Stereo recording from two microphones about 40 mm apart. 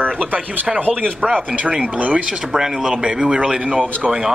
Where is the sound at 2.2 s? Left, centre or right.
Centre.